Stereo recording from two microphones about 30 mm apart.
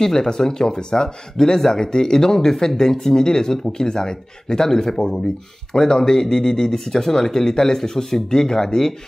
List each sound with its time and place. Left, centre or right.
0.0 s speech: centre